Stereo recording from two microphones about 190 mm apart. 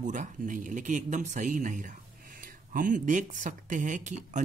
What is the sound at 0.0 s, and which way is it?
Speech, 40° right (ahead or behind).